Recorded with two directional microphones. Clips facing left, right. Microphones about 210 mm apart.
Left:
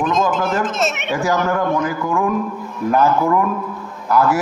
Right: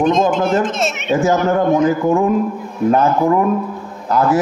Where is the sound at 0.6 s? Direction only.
Centre (ahead or behind).